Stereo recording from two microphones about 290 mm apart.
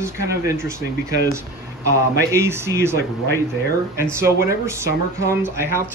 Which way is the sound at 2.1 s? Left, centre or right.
Centre.